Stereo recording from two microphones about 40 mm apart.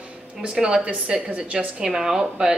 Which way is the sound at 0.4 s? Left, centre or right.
Right.